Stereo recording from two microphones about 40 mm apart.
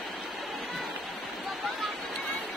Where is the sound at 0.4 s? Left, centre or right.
Centre.